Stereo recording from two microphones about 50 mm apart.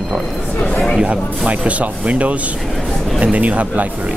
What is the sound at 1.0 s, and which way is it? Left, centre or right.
Speech, right.